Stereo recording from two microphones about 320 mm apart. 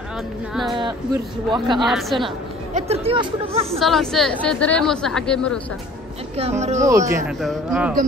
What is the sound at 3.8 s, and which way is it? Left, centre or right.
A woman's voice, centre.